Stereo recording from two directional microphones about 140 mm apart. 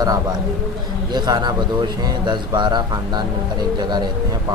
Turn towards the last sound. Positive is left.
turn(degrees=-30)  # may be behind; listen again after turning